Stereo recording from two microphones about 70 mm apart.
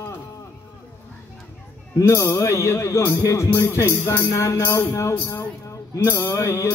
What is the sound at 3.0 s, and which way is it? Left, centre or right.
A man's voice, left.